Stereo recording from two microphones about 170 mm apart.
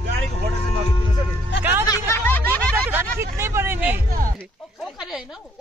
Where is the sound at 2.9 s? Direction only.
15° right (ahead or behind).